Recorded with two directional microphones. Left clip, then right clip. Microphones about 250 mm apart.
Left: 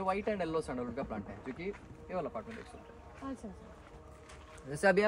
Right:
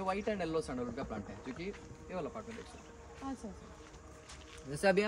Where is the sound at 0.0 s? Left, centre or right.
Centre.